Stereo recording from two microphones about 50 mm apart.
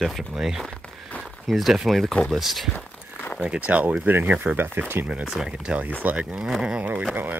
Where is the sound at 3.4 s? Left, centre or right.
Right.